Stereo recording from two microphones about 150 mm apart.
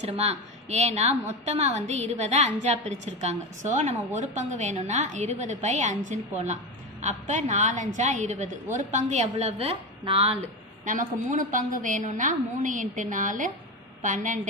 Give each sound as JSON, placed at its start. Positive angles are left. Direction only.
{"t": 0.0, "sound": "a woman's voice", "side_deg": -45}
{"t": 10.9, "sound": "a woman's voice", "side_deg": -60}